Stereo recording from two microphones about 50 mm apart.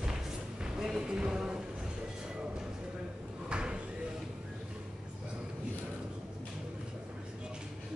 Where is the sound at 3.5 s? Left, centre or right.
Centre.